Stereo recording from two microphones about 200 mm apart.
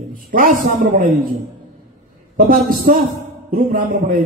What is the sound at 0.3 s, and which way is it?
Speech, 40° right (ahead or behind).